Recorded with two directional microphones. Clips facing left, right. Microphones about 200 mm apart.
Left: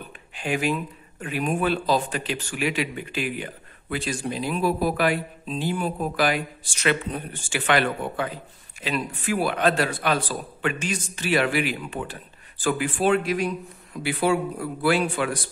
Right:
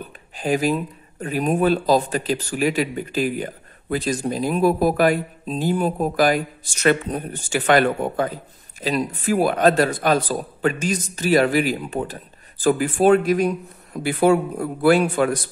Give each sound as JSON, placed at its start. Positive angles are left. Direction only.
{"t": 0.4, "sound": "speech", "side_deg": -40}